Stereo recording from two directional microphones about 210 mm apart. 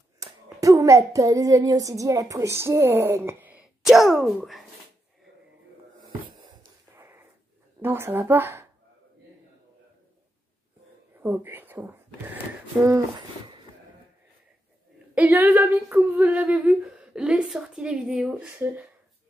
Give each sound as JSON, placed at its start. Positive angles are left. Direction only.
{"t": 0.2, "sound": "a child's voice", "side_deg": -15}
{"t": 7.0, "sound": "wheeze", "side_deg": -10}
{"t": 7.8, "sound": "speech", "side_deg": -10}
{"t": 11.1, "sound": "whispering", "side_deg": -10}
{"t": 12.8, "sound": "speech", "side_deg": -20}
{"t": 15.1, "sound": "speech", "side_deg": -10}